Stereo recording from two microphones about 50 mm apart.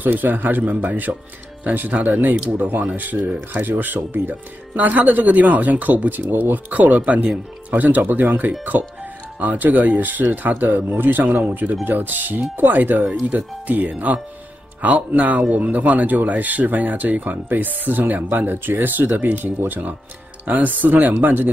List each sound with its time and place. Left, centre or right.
0.0 s speech: right